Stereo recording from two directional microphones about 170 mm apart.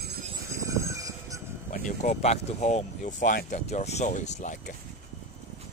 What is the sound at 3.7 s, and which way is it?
Speech, 40° left (ahead or behind).